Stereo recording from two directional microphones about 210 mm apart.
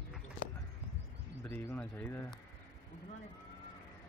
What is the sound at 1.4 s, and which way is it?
Speech, 10° left (ahead or behind).